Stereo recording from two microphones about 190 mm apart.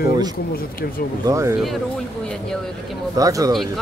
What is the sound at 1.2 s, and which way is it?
Speech, 15° right (ahead or behind).